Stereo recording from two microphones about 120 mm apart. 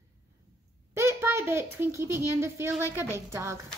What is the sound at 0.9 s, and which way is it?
A child's voice, 20° right (ahead or behind).